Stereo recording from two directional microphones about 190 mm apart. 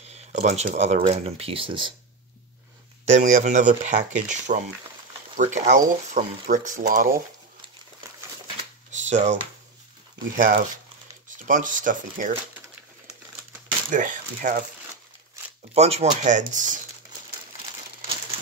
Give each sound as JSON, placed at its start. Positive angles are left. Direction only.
{"t": 0.1, "sound": "speech", "side_deg": -35}
{"t": 3.1, "sound": "speech", "side_deg": -40}
{"t": 8.9, "sound": "speech", "side_deg": -40}
{"t": 13.9, "sound": "speech", "side_deg": -45}
{"t": 15.7, "sound": "speech", "side_deg": -35}